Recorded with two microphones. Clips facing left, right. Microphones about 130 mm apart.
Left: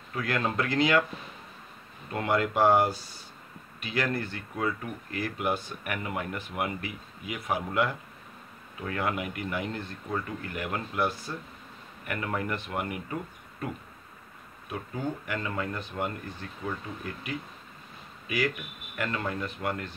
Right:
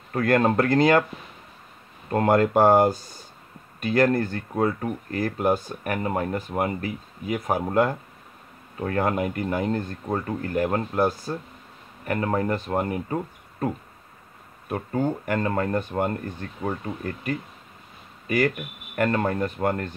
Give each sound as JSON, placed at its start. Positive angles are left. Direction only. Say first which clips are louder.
{"t": 0.1, "sound": "speech", "louder": "right 9 dB", "side_deg": -50}
{"t": 2.0, "sound": "speech", "louder": "right 8 dB", "side_deg": -45}
{"t": 14.7, "sound": "speech", "louder": "right 8 dB", "side_deg": -50}